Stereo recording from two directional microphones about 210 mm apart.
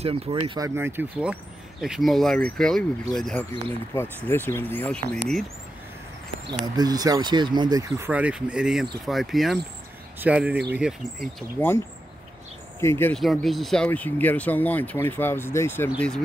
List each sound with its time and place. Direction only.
0.0 s speech: 25° right (ahead or behind)
0.7 s speech: 10° right (ahead or behind); by 5.2 s 5° left (ahead or behind)
6.6 s speech: 20° right (ahead or behind)
8.1 s speech: 5° right (ahead or behind)
11.6 s speech: 10° left (ahead or behind)
12.8 s speech: 10° left (ahead or behind)
13.2 s speech: centre (ahead or behind)